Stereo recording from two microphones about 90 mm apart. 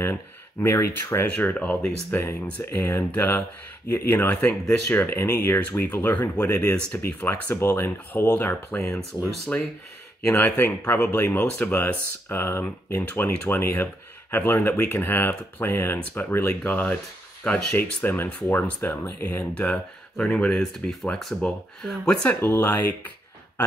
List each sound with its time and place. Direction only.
0.0 s speech: 25° left (ahead or behind)
4.3 s speech: 15° left (ahead or behind)
17.7 s speech: 25° left (ahead or behind); by 22.3 s 5° left (ahead or behind)
22.3 s speech: 20° left (ahead or behind)